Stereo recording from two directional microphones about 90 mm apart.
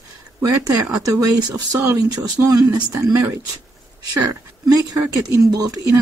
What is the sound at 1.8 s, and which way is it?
Speech, 30° right (ahead or behind).